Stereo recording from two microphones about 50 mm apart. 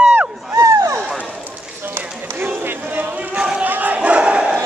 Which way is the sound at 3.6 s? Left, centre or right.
Right.